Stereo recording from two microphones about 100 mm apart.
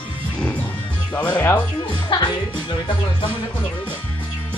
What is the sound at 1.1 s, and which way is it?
Music, 15° left (ahead or behind).